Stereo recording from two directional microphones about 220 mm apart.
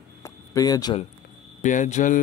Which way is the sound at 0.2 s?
15° left (ahead or behind).